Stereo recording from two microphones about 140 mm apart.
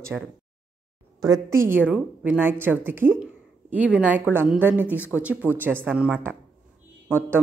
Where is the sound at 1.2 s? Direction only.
25° right (ahead or behind).